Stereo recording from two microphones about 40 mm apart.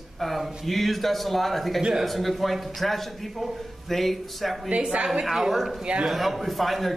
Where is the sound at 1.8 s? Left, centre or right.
Centre.